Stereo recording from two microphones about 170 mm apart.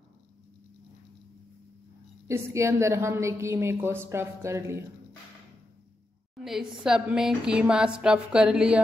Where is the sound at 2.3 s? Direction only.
15° right (ahead or behind).